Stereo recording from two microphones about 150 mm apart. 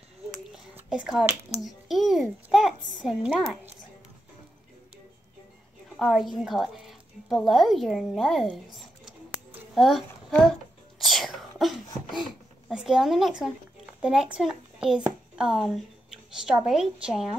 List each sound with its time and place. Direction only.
0.7 s a child's voice: 5° right (ahead or behind)
5.9 s a woman's voice: centre (ahead or behind)
9.8 s a child's voice: centre (ahead or behind)
11.0 s a sound: centre (ahead or behind)
14.0 s a child's voice: 5° right (ahead or behind)